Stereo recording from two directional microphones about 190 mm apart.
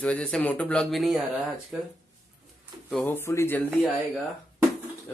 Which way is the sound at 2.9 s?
5° left (ahead or behind).